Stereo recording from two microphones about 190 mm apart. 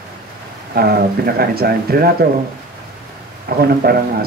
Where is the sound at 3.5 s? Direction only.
55° right (ahead or behind).